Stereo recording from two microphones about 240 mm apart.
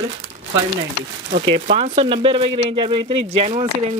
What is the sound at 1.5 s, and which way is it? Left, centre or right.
Speech, right.